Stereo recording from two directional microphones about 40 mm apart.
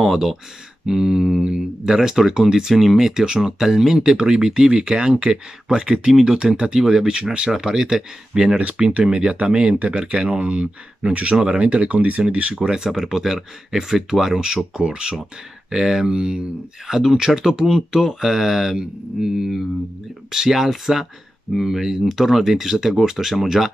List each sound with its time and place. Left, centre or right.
0.0 s speech: centre; by 12.6 s right
12.6 s speech: centre